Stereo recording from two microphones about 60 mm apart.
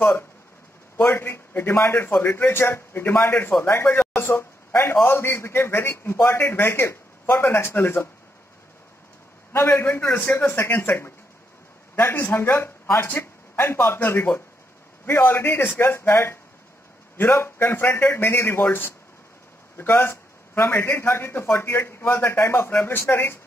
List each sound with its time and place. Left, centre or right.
0.9 s a man's voice: left
4.1 s a sound: left
5.0 s a man's voice: left
9.8 s a man's voice: left